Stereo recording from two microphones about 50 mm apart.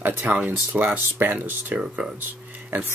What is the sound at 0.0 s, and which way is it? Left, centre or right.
Speech, right.